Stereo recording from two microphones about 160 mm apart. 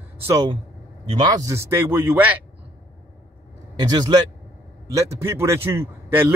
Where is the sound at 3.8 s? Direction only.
25° right (ahead or behind).